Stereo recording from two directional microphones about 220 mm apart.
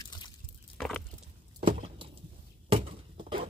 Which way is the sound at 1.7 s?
25° right (ahead or behind).